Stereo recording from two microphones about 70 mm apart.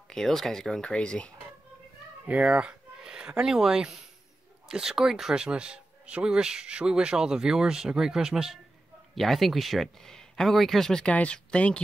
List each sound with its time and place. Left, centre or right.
0.1 s speech: centre
2.2 s speech: centre
9.1 s speech: centre